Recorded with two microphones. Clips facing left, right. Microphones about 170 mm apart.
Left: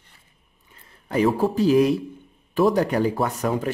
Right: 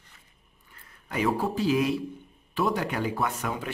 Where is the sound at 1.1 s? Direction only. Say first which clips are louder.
Left 6 dB; 40° left (ahead or behind).